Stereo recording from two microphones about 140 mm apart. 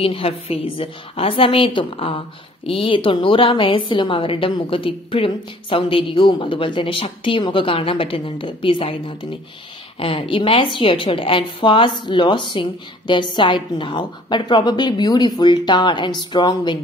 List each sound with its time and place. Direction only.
0.0 s a woman's voice: 40° left (ahead or behind)